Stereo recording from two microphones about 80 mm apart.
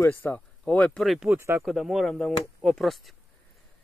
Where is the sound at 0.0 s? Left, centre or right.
Left.